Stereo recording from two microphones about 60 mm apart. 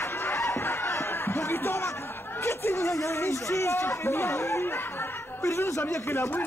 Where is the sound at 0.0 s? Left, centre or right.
Left.